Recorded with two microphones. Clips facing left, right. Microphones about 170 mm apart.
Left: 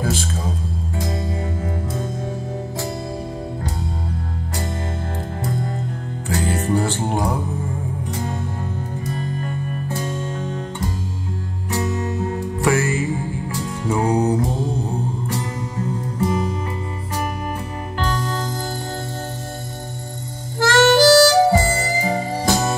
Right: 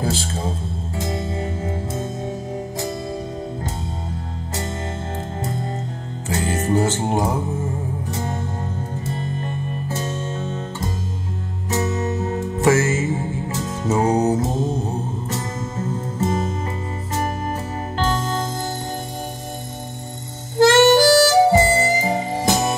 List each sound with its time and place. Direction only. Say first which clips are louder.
0.0 s music: even; 30° right (ahead or behind)
5.4 s music: left 3 dB; 25° right (ahead or behind)
9.0 s music: left 2 dB; 25° right (ahead or behind)
11.7 s music: right 1 dB; 20° right (ahead or behind)
16.2 s music: left 1 dB; 25° right (ahead or behind)
17.9 s music: right 2 dB; 25° right (ahead or behind)
20.5 s harmonica: right 2 dB; 20° right (ahead or behind)